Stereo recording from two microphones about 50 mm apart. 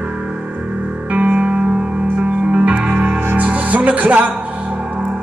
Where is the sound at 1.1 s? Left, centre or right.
Right.